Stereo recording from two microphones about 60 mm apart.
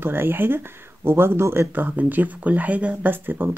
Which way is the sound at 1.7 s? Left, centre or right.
Right.